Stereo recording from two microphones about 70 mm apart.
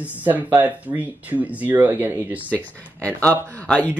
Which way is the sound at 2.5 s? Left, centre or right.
Left.